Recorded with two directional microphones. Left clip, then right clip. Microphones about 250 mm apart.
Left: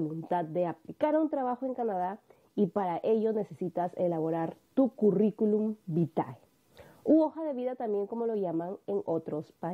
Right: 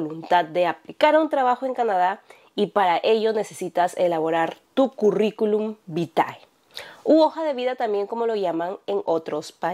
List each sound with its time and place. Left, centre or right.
0.0 s a woman's voice: centre
4.8 s speech: right
5.1 s a woman's voice: centre
8.9 s speech: right
9.2 s a woman's voice: centre